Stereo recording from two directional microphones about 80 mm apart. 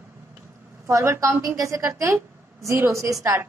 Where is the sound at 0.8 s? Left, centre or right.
Right.